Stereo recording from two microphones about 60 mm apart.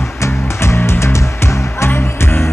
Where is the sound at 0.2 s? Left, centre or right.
Left.